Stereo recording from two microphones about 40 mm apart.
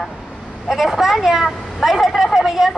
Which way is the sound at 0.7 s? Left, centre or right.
Centre.